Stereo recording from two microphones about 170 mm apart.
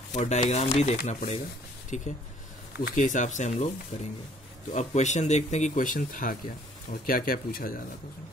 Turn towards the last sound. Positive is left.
turn(degrees=55)  # may be behind; listen again after turning